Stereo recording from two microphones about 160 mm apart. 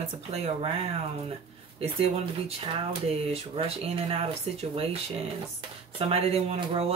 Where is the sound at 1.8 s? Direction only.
40° right (ahead or behind).